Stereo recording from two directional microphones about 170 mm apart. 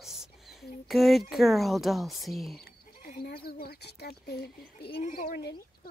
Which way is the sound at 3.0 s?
60° left (ahead or behind).